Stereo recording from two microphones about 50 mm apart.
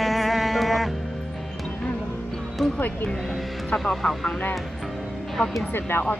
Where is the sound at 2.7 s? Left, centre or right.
Left.